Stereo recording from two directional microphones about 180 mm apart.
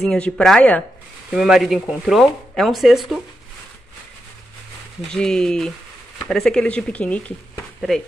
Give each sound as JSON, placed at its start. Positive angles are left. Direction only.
{"t": 0.0, "sound": "speech", "side_deg": 5}
{"t": 5.1, "sound": "speech", "side_deg": 5}